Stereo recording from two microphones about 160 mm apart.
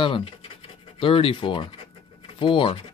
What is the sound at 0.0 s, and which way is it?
Speech, 35° left (ahead or behind).